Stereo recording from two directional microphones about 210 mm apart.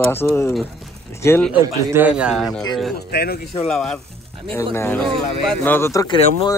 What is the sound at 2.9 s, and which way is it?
Speech, 50° left (ahead or behind).